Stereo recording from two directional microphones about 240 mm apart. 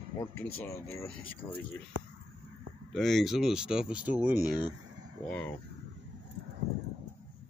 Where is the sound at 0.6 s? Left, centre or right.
Centre.